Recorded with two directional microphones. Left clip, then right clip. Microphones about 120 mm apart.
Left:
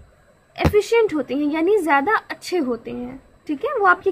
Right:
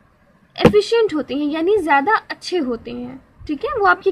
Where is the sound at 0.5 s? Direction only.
25° right (ahead or behind).